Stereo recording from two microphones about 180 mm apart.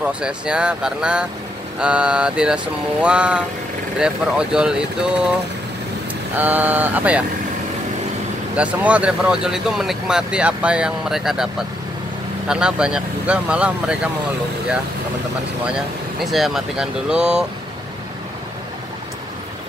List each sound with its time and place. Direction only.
0.0 s speech: 5° right (ahead or behind)
6.3 s a sound: 10° right (ahead or behind)
8.5 s speech: 5° right (ahead or behind)
12.4 s speech: 5° right (ahead or behind)
16.3 s speech: centre (ahead or behind)